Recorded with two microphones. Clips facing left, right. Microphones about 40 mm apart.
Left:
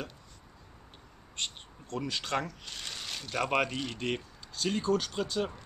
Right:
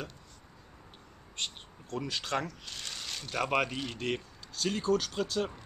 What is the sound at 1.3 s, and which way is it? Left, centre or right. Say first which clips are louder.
Speech: even; centre.